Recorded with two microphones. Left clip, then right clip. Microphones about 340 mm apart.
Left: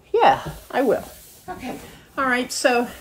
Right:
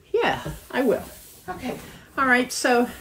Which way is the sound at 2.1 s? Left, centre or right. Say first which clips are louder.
Right 2 dB; centre.